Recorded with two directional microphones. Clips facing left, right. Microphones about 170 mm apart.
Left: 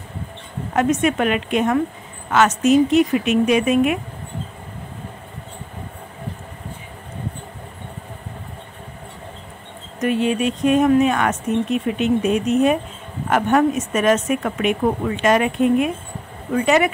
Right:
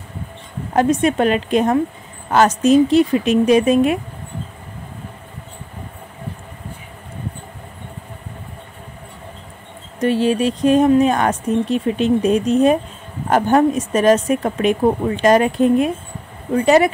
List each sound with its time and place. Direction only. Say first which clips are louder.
0.7 s speech: right 3 dB; 35° right (ahead or behind)
9.9 s speech: right 3 dB; 30° right (ahead or behind)